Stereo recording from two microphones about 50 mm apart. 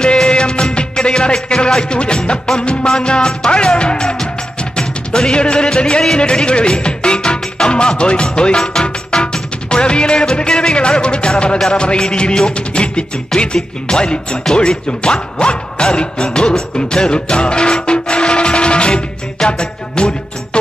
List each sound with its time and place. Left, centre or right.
0.0 s music: centre